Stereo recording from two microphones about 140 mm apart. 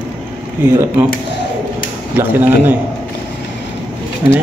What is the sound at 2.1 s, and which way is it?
Speech, 15° right (ahead or behind).